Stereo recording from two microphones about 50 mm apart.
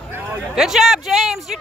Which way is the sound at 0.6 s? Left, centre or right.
Centre.